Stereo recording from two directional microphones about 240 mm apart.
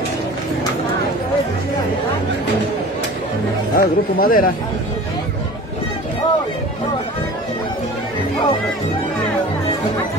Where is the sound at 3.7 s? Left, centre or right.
Left.